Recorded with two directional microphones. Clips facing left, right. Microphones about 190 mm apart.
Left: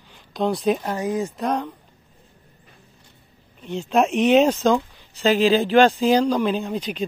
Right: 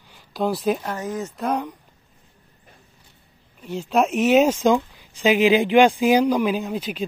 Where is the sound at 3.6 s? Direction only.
5° right (ahead or behind).